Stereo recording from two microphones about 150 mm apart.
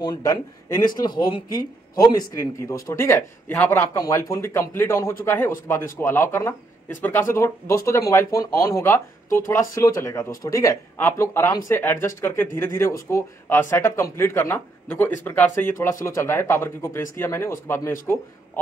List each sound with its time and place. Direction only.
0.0 s a man's voice: 25° left (ahead or behind)